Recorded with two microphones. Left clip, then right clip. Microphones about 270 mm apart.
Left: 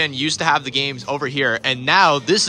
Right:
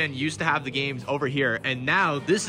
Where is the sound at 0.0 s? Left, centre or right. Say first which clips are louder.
Left 7 dB; centre.